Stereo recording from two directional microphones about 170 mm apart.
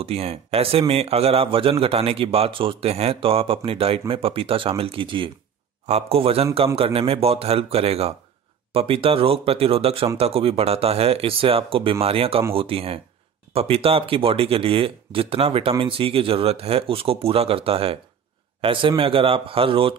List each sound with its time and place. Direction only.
0.0 s a man's voice: 35° right (ahead or behind)